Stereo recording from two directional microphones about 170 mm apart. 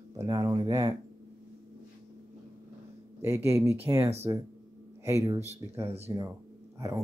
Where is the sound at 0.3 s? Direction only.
20° right (ahead or behind).